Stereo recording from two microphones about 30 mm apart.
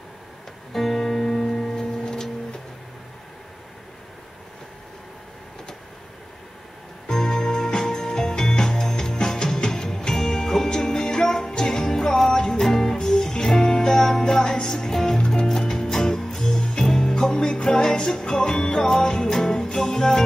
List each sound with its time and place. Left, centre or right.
0.7 s music: centre
7.1 s music: left
12.6 s music: centre